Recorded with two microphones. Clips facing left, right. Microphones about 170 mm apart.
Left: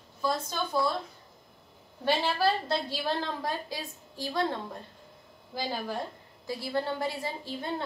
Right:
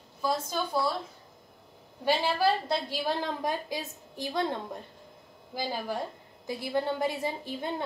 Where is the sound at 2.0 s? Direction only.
10° right (ahead or behind).